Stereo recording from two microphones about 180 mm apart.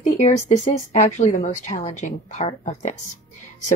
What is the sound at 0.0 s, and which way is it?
Speech, 40° left (ahead or behind).